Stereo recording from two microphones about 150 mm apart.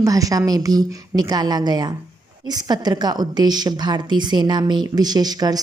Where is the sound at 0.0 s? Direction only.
25° right (ahead or behind).